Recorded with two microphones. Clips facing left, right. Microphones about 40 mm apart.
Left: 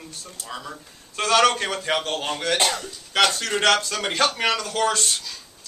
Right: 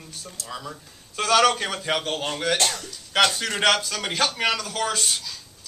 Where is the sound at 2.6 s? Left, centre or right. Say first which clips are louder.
Left 3 dB; centre.